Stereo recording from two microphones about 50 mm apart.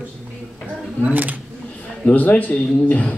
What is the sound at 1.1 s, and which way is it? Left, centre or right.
Speech, right.